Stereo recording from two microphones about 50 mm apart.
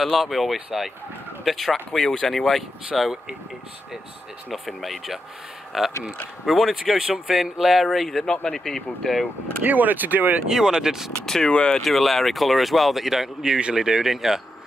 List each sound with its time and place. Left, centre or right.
0.0 s speech: centre
4.5 s speech: centre
9.7 s speech: right
10.5 s speech: centre
11.2 s speech: centre
11.8 s speech: centre